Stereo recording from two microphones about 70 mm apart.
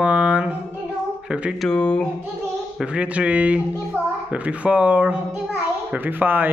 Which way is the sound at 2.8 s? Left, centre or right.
Centre.